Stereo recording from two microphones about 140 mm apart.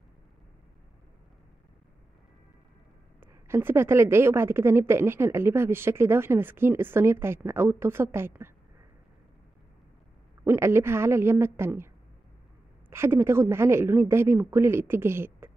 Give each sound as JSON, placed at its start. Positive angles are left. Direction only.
{"t": 3.2, "sound": "a woman's voice", "side_deg": -15}
{"t": 10.4, "sound": "a woman's voice", "side_deg": -20}
{"t": 12.9, "sound": "a woman's voice", "side_deg": -15}